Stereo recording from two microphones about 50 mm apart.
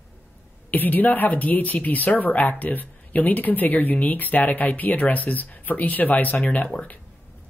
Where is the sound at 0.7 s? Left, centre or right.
Left.